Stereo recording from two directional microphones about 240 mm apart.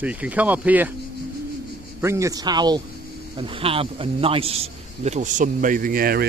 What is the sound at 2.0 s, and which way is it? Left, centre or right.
A man's voice, centre.